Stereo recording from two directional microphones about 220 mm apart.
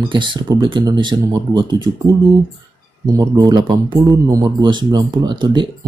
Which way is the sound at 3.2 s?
15° right (ahead or behind).